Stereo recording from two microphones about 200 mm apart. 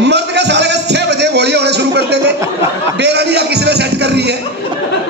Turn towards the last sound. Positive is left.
turn(degrees=-55)  # may be behind; listen again after turning